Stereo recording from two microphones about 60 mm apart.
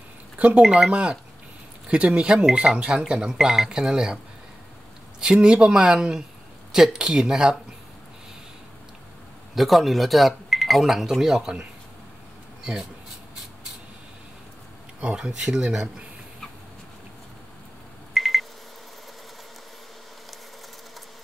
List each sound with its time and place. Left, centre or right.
0.6 s speech: centre
5.2 s speech: centre
9.6 s speech: centre
15.0 s speech: centre
18.1 s telephone dialing: centre